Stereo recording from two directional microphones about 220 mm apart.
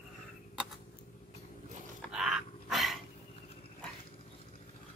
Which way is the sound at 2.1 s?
5° right (ahead or behind).